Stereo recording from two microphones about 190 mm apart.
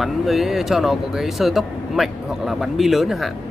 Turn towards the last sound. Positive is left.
turn(degrees=0)  # may be behind; listen again after turning